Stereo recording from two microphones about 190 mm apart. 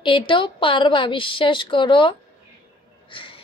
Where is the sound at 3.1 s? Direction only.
25° left (ahead or behind).